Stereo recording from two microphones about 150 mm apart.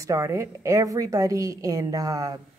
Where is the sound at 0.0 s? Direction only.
20° right (ahead or behind).